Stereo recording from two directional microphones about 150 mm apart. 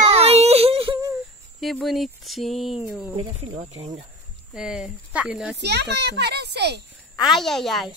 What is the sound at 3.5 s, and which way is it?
Speech, 45° right (ahead or behind).